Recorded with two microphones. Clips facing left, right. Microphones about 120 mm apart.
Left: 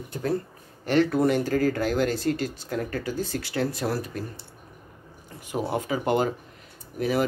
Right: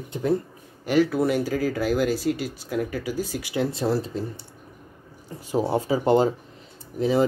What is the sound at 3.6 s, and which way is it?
Speech, 25° right (ahead or behind).